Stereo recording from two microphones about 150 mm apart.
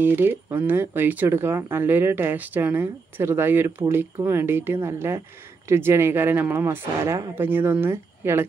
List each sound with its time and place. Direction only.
0.0 s speech: 15° right (ahead or behind)